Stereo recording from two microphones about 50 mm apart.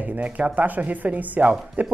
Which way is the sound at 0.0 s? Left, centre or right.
Right.